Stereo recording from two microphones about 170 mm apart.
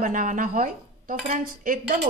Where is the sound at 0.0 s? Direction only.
50° right (ahead or behind).